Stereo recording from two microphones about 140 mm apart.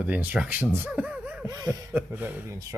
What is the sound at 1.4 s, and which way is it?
Speech, 20° right (ahead or behind).